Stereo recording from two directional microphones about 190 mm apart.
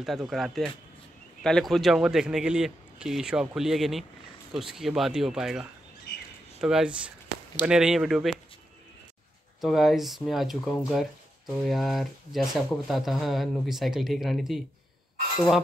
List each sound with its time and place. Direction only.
0.0 s speech: centre (ahead or behind)
6.1 s chirp: 60° left (ahead or behind)
6.6 s speech: 5° right (ahead or behind)
9.6 s speech: centre (ahead or behind)